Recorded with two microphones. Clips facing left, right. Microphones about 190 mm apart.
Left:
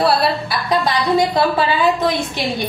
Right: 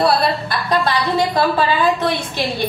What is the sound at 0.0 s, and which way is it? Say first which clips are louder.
A woman's voice: even; 5° left (ahead or behind).